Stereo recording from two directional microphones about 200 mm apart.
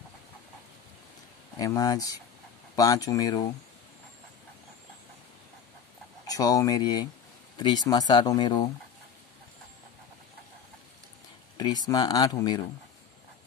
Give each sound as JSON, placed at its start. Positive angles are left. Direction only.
{"t": 1.6, "sound": "speech", "side_deg": 15}
{"t": 6.2, "sound": "speech", "side_deg": 20}
{"t": 11.5, "sound": "speech", "side_deg": 20}